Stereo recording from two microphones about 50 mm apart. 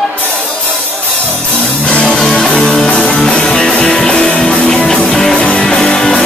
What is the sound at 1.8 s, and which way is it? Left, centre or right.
Music, left.